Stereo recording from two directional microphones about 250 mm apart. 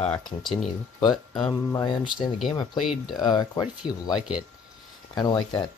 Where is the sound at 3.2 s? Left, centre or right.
Centre.